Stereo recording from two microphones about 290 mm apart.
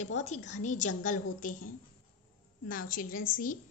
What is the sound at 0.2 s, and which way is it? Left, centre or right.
A woman's voice, left.